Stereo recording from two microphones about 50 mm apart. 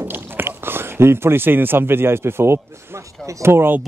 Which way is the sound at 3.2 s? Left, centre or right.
Right.